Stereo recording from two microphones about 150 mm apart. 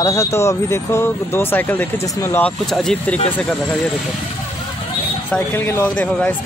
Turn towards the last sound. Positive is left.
turn(degrees=15)  # may be behind; listen again after turning